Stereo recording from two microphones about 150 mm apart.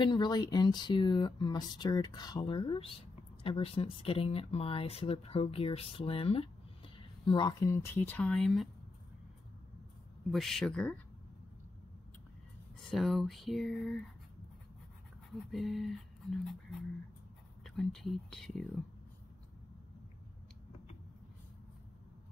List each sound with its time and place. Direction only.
0.0 s speech: 30° left (ahead or behind); by 8.6 s 5° left (ahead or behind)
10.3 s speech: centre (ahead or behind)
12.9 s speech: centre (ahead or behind)
15.5 s speech: centre (ahead or behind)
17.6 s speech: centre (ahead or behind)